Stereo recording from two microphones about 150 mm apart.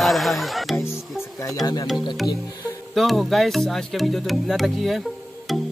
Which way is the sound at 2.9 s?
Centre (ahead or behind).